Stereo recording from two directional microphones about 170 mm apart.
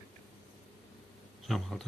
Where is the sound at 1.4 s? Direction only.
Centre (ahead or behind).